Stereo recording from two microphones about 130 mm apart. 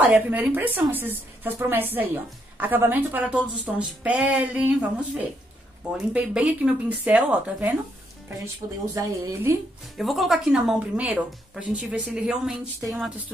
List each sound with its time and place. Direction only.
0.0 s a woman's voice: 10° right (ahead or behind)
8.9 s a woman's voice: 25° right (ahead or behind)
9.9 s a woman's voice: centre (ahead or behind)